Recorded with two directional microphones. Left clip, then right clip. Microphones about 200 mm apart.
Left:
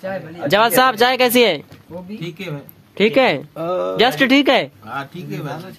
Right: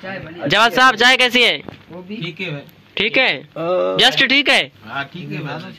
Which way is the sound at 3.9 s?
5° left (ahead or behind).